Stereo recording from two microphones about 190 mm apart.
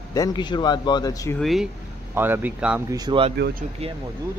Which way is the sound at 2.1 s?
10° right (ahead or behind).